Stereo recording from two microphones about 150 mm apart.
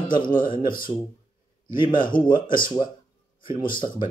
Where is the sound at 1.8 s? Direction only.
30° left (ahead or behind).